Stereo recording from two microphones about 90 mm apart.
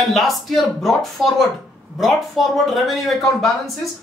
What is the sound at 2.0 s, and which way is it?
Speech, centre (ahead or behind).